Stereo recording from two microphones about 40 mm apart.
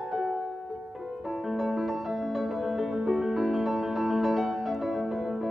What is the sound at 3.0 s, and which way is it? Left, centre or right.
Music, centre.